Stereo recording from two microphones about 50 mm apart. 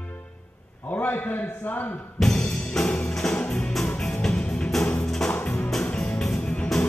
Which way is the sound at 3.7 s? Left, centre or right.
Centre.